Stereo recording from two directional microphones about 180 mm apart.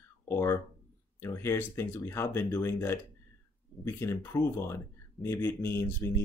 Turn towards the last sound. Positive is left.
turn(degrees=15)  # may be behind; listen again after turning